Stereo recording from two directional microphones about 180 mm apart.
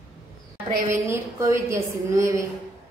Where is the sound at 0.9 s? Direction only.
15° right (ahead or behind).